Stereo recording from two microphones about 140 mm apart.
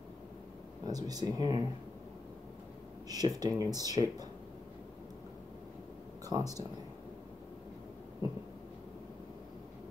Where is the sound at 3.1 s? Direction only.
25° right (ahead or behind).